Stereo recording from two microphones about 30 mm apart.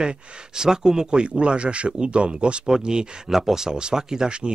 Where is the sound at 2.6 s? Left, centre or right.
Right.